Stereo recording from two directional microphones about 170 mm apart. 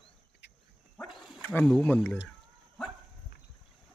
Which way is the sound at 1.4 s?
10° left (ahead or behind).